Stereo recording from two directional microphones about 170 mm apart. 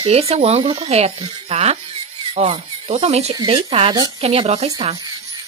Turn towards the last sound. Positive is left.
turn(degrees=-40)  # may be behind; listen again after turning